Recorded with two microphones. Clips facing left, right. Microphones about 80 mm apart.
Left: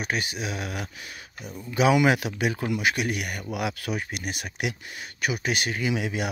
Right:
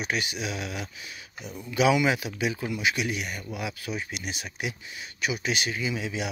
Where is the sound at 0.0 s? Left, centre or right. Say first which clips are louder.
Left 1 dB; left.